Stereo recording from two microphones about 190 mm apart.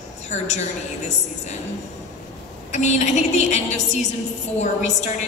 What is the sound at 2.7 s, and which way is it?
A woman's voice, 40° left (ahead or behind).